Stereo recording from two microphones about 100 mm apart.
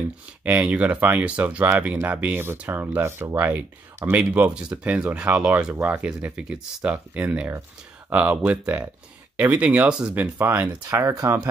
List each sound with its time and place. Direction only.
0.5 s speech: 15° right (ahead or behind)
10.9 s speech: 30° right (ahead or behind)